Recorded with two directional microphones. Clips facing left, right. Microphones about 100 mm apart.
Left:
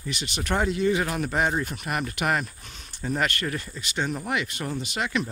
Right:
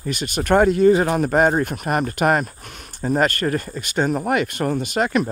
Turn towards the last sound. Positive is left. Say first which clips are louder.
# right 8 dB
turn(degrees=-45)  # may be behind; listen again after turning